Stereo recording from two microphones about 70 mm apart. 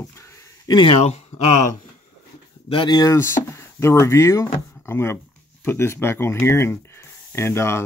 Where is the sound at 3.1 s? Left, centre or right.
Left.